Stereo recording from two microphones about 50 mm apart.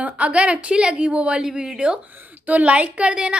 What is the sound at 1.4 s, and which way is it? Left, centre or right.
A woman's voice, centre.